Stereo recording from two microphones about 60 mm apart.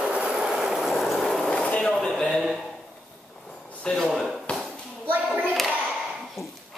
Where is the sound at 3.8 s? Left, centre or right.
Centre.